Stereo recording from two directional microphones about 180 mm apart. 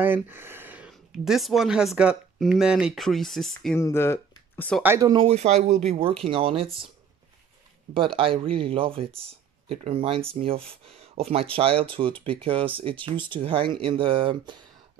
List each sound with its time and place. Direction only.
0.0 s speech: 10° right (ahead or behind)
3.7 s speech: 15° left (ahead or behind)
4.8 s speech: 15° right (ahead or behind)
5.1 s speech: 35° right (ahead or behind)
7.9 s speech: 30° right (ahead or behind)